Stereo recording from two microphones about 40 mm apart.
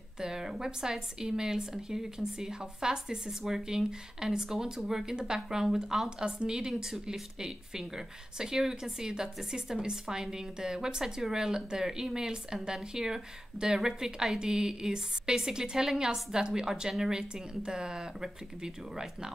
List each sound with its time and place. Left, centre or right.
0.2 s a woman's voice: centre